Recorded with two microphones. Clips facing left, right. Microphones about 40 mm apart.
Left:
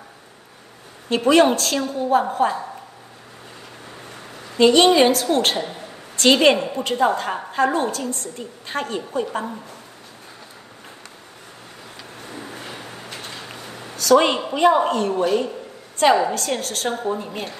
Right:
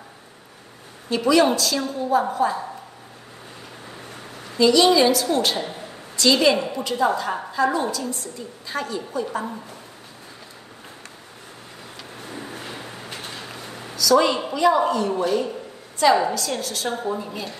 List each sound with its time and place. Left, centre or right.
1.0 s a woman's voice: left
4.1 s a sound: centre
4.6 s a woman's voice: left
5.7 s a sound: centre
6.1 s a woman's voice: left
12.2 s a sound: centre
13.9 s a woman's voice: left
16.0 s a woman's voice: left
17.0 s a woman's voice: left